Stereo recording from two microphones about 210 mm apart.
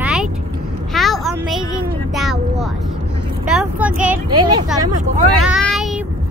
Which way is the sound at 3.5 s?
5° right (ahead or behind).